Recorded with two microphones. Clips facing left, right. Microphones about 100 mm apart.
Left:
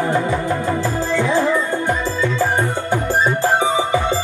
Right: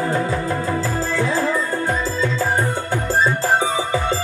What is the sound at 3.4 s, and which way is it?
Music, 20° left (ahead or behind).